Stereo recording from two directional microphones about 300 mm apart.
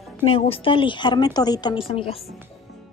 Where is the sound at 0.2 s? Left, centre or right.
Centre.